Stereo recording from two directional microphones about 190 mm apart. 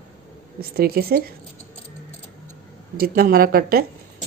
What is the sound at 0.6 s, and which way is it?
Speech, 55° right (ahead or behind).